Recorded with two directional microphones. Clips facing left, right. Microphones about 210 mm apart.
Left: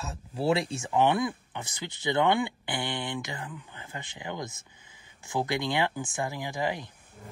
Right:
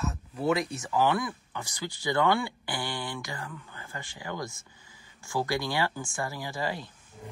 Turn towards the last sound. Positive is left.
turn(degrees=15)  # may be behind; listen again after turning